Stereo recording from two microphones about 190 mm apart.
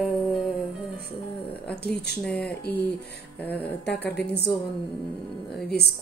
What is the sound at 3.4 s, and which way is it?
Speech, 10° left (ahead or behind).